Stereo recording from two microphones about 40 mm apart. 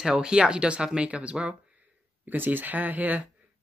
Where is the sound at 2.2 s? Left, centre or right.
Right.